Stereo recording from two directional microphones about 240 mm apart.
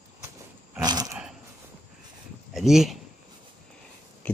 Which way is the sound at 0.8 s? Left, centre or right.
Centre.